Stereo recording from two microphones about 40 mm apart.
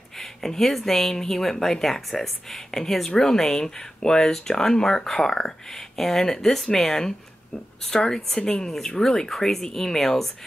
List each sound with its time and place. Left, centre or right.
0.2 s speech: centre